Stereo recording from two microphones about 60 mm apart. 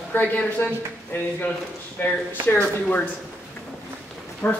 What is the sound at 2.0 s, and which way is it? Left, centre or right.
Speech, left.